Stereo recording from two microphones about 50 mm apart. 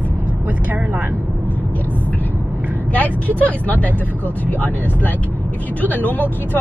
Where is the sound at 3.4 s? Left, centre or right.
Left.